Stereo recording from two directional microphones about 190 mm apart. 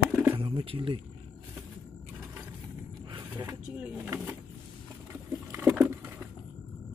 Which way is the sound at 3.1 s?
20° right (ahead or behind).